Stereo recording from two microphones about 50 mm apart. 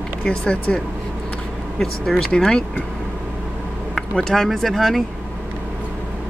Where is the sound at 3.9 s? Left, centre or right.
Centre.